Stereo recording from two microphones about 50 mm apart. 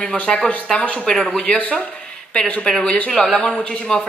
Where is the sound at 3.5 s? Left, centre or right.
Centre.